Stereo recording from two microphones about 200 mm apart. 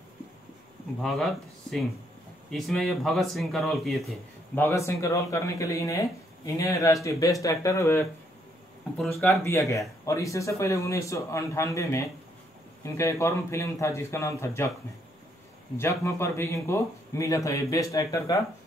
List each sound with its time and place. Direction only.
1.0 s speech: centre (ahead or behind)
4.6 s speech: 10° left (ahead or behind)
9.4 s speech: 15° left (ahead or behind)
15.8 s speech: 15° left (ahead or behind)